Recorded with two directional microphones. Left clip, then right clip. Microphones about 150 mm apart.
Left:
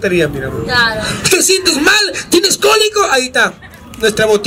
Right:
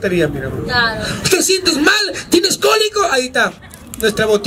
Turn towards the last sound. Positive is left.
turn(degrees=0)  # may be behind; listen again after turning